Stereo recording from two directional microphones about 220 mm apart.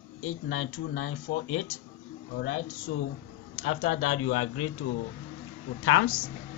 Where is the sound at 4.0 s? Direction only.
75° left (ahead or behind).